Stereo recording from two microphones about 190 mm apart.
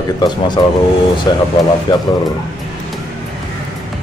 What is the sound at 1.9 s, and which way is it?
Speech, 25° left (ahead or behind).